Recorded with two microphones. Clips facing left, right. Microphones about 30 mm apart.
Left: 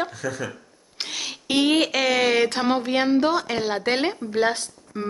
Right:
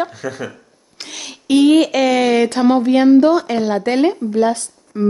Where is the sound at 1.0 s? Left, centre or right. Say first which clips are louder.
Left 1 dB; centre.